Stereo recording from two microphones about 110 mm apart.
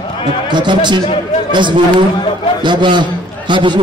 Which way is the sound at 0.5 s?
45° right (ahead or behind).